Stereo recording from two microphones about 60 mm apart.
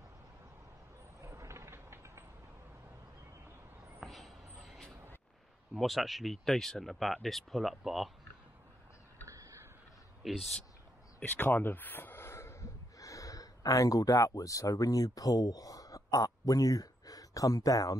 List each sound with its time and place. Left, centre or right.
1.2 s a sound: right
4.0 s a sound: centre
5.8 s speech: centre
9.2 s tick-tock: right
10.2 s speech: centre
11.1 s speech: left